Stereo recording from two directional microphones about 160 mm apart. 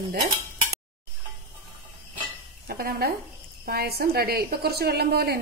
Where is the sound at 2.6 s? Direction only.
75° right (ahead or behind).